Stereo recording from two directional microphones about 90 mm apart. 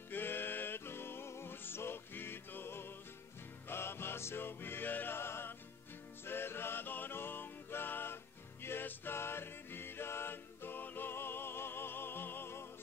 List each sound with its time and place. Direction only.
0.1 s music: 25° left (ahead or behind)